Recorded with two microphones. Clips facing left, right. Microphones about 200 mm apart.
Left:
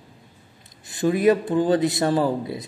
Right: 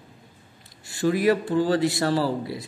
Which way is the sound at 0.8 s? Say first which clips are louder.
Left 3 dB; 20° left (ahead or behind).